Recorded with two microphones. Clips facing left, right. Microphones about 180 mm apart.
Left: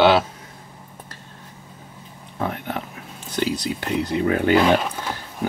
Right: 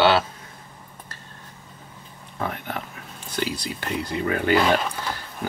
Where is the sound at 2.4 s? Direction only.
10° left (ahead or behind).